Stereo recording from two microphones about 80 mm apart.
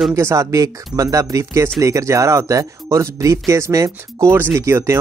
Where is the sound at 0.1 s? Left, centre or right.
Right.